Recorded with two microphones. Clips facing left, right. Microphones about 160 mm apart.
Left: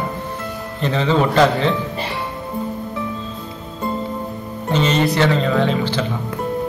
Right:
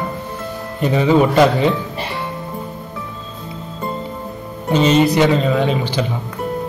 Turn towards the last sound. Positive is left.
turn(degrees=-15)  # may be behind; listen again after turning